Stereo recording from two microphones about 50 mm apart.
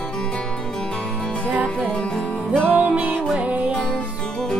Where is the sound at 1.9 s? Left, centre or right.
Centre.